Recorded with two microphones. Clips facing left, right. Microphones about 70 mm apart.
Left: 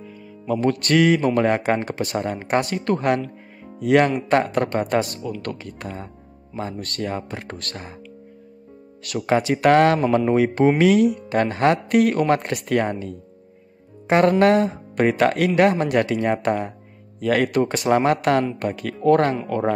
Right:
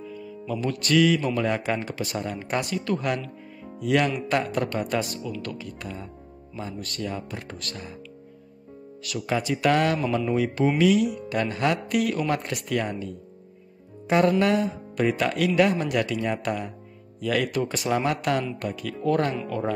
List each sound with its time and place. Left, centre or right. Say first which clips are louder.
0.0 s speech: even; left
9.0 s speech: left 7 dB; left